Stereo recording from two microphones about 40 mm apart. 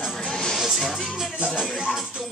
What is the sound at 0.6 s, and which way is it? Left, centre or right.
Speech, centre.